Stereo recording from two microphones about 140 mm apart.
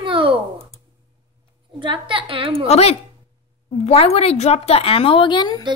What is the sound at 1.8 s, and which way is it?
Speech, 40° right (ahead or behind).